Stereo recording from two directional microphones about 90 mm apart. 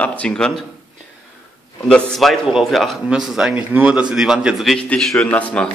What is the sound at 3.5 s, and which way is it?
A man's voice, 15° right (ahead or behind).